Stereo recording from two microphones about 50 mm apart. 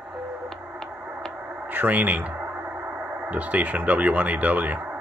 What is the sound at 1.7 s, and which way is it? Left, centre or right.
Speech, right.